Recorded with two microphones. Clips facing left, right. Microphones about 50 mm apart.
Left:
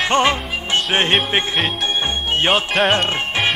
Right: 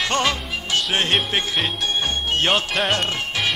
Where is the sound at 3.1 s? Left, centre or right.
Left.